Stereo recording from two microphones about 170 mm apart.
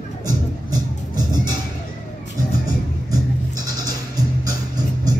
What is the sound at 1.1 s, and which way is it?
Music, 25° right (ahead or behind).